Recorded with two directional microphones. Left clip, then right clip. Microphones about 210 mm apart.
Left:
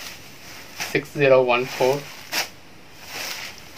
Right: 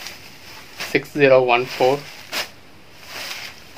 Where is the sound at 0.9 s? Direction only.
50° right (ahead or behind).